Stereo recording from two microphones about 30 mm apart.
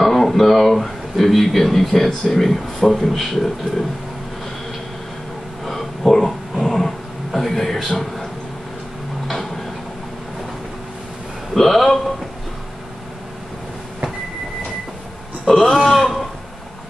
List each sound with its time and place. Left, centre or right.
0.0 s speech: centre
5.7 s a sound: centre
6.6 s dog: centre
7.3 s a man's voice: centre
11.5 s speech: centre
15.5 s speech: centre
15.9 s a man's voice: centre